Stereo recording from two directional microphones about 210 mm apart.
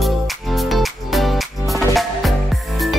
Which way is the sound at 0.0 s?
Centre (ahead or behind).